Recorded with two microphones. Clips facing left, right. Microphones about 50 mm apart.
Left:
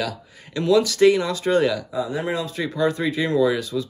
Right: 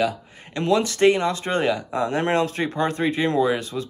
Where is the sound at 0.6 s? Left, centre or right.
Right.